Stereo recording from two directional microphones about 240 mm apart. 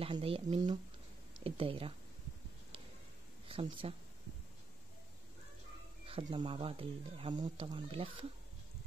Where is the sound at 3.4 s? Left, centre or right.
Right.